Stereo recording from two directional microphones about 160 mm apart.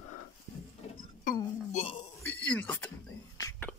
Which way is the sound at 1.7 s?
40° left (ahead or behind).